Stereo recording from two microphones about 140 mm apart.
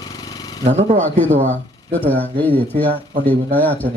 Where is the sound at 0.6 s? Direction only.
55° right (ahead or behind).